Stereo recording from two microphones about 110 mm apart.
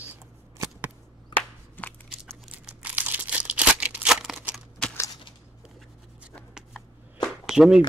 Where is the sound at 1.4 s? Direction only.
15° left (ahead or behind).